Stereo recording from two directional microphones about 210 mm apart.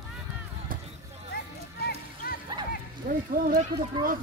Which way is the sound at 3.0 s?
40° right (ahead or behind).